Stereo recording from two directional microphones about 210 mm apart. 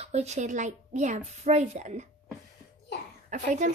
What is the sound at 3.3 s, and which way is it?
Speech, 35° right (ahead or behind).